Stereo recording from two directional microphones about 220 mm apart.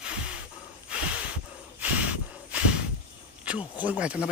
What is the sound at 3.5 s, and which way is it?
Speech, 5° right (ahead or behind).